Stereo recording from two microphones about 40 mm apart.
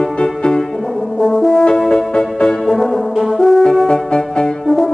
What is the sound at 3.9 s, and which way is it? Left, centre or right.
Music, centre.